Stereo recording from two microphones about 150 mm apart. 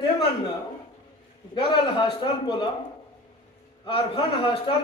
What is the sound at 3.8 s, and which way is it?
Speech, 35° left (ahead or behind).